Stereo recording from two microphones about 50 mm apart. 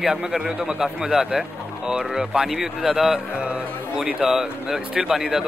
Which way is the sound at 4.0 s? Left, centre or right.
Centre.